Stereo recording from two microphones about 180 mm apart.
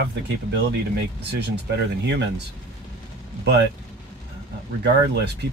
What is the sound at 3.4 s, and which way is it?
Speech, 75° right (ahead or behind).